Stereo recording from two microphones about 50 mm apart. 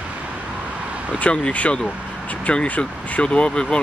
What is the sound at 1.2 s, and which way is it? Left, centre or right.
Speech, left.